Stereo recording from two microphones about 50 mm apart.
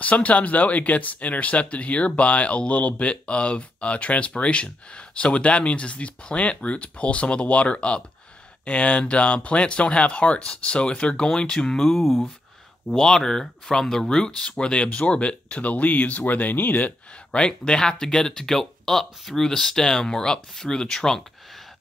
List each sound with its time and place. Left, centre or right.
0.0 s speech: left
11.9 s speech: centre
12.9 s speech: centre; by 16.9 s left
17.3 s speech: centre